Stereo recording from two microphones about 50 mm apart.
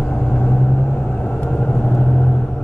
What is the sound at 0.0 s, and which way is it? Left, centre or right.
Vehicle, left.